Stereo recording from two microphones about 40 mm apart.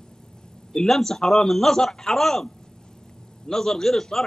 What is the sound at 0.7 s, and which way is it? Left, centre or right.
Speech, centre.